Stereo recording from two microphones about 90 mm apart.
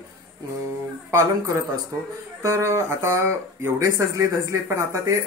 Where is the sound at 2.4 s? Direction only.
35° right (ahead or behind).